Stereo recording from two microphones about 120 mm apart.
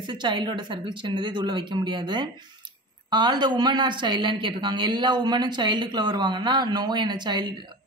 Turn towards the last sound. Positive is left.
turn(degrees=-35)  # may be behind; listen again after turning